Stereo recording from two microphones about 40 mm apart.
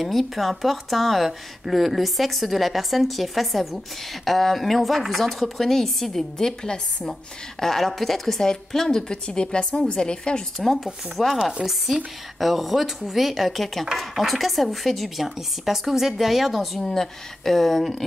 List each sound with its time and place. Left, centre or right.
0.0 s a woman's voice: centre
7.6 s a woman's voice: centre
10.6 s speech: centre